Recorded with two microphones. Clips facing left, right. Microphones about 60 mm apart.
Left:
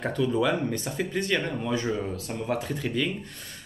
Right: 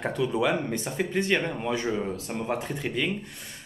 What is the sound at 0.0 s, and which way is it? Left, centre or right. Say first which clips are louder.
Speech: left 1 dB; centre.